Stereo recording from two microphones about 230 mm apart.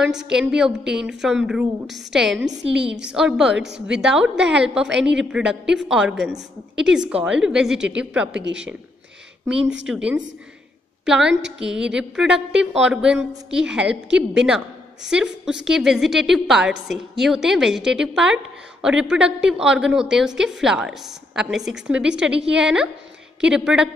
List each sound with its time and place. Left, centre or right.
0.0 s a woman's voice: centre
8.3 s speech: right
9.8 s a woman's voice: centre